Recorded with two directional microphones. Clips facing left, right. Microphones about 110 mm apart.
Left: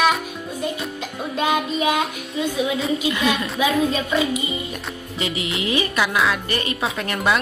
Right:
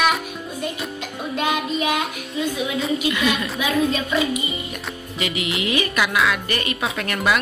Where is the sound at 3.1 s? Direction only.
30° left (ahead or behind).